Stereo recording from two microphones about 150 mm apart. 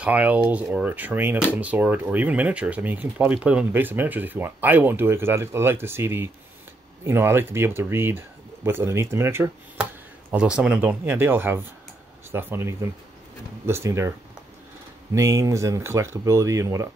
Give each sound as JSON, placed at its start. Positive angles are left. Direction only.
{"t": 0.0, "sound": "speech", "side_deg": -10}
{"t": 15.1, "sound": "speech", "side_deg": -20}